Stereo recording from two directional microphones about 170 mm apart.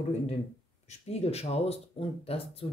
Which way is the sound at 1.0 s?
40° left (ahead or behind).